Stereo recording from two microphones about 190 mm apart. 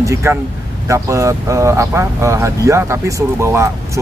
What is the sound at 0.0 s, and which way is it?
Speech, 15° right (ahead or behind).